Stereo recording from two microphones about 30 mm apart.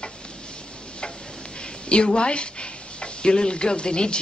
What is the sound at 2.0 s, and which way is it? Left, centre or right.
A woman's voice, left.